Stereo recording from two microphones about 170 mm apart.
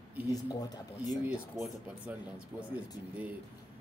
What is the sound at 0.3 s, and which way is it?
Speech, 20° left (ahead or behind).